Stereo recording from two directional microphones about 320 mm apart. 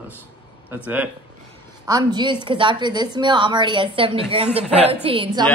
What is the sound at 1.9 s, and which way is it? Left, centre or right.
A woman's voice, centre.